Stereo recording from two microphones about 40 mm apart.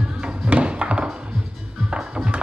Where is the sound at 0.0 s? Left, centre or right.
Right.